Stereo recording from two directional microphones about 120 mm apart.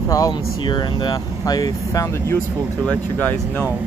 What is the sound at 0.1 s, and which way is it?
Speech, 35° left (ahead or behind).